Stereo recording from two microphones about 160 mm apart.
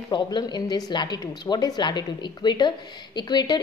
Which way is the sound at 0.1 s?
25° left (ahead or behind).